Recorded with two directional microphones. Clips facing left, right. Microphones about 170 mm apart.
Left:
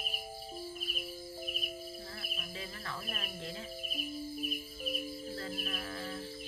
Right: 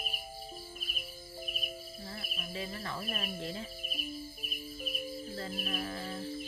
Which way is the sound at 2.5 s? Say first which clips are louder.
Right 6 dB; 10° right (ahead or behind).